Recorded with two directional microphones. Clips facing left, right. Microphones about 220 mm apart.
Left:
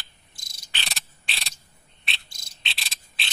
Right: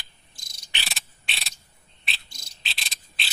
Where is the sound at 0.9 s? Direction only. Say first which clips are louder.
Even; centre (ahead or behind).